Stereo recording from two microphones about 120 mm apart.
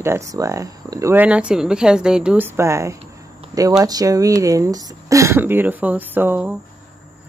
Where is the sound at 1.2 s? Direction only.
10° right (ahead or behind).